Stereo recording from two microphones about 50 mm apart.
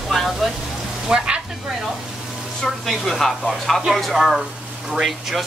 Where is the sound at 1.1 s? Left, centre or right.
Centre.